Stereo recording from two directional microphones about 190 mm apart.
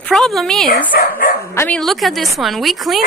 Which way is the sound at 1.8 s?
Centre (ahead or behind).